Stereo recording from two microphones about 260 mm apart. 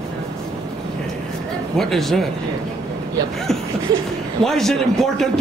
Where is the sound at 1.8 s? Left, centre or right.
Centre.